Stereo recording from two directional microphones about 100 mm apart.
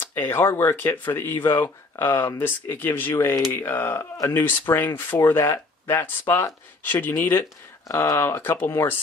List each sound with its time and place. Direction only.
0.0 s speech: 25° left (ahead or behind)